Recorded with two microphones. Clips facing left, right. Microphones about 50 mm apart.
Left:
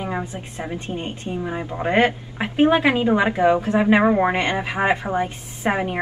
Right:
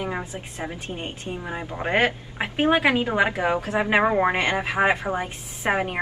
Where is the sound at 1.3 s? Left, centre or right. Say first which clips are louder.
Left 5 dB; centre.